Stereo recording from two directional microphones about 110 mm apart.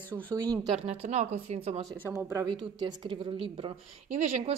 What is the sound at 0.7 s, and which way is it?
Speech, 90° right.